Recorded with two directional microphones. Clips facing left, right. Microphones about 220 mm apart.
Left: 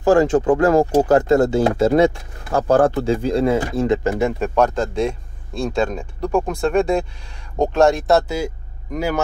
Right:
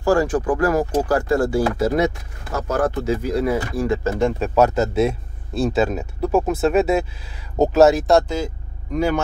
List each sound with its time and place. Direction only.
0.0 s speech: 20° left (ahead or behind)
4.4 s speech: 5° right (ahead or behind)